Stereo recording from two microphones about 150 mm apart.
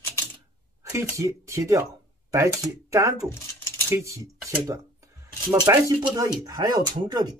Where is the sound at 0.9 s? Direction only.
20° right (ahead or behind).